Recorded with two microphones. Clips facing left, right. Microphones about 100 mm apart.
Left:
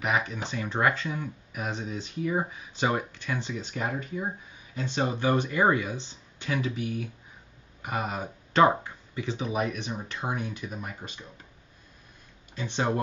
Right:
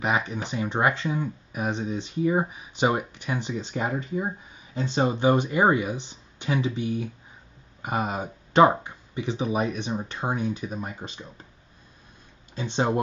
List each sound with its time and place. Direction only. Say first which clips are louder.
0.0 s speech: right 2 dB; 20° right (ahead or behind)
12.5 s speech: right 3 dB; 20° right (ahead or behind)